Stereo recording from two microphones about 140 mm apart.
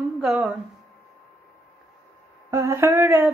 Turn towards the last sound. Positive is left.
turn(degrees=-15)  # may be behind; listen again after turning